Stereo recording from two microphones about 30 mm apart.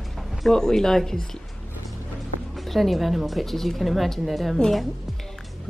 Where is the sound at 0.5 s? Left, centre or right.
Centre.